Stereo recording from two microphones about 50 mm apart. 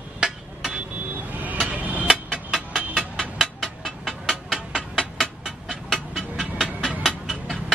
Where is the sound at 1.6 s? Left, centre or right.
Right.